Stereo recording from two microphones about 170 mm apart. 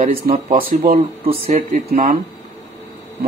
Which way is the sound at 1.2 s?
35° right (ahead or behind).